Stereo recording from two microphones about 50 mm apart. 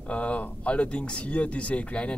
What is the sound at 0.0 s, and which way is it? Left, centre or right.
Speech, left.